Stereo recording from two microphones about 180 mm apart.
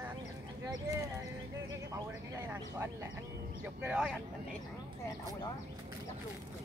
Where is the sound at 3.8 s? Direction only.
5° right (ahead or behind).